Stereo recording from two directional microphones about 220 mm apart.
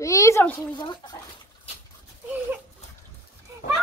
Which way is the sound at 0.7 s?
20° left (ahead or behind).